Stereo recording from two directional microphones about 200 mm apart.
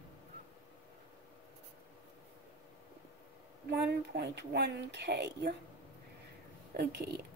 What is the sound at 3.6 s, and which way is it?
Speech, 55° right (ahead or behind).